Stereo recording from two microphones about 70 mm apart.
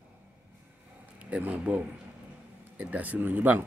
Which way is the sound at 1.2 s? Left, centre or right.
Centre.